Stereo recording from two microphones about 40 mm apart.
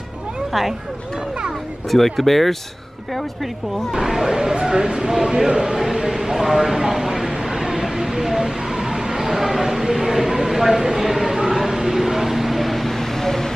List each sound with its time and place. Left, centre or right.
0.5 s speech: centre
1.9 s speech: centre
3.9 s speech: centre
6.3 s a sound: centre